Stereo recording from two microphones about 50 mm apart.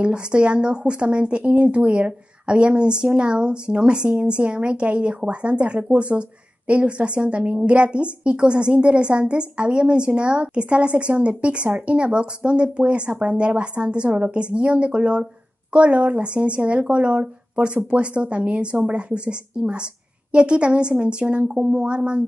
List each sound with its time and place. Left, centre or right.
0.0 s a woman's voice: centre
5.8 s speech: right
6.7 s a woman's voice: right